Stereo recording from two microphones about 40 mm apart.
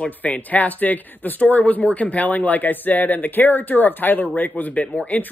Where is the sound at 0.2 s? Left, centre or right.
Left.